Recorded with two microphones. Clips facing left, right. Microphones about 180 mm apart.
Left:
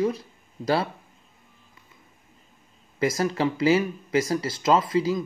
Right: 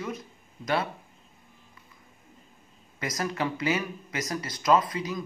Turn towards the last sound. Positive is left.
turn(degrees=30)  # may be behind; listen again after turning